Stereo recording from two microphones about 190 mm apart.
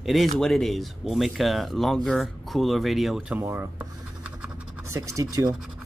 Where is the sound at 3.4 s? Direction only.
10° right (ahead or behind).